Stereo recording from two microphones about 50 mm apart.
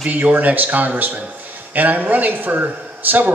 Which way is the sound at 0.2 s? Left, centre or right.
Right.